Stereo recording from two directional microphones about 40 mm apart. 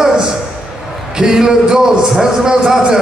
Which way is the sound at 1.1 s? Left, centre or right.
Centre.